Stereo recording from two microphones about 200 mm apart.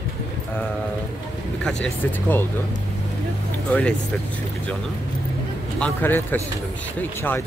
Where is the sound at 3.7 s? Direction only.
5° left (ahead or behind).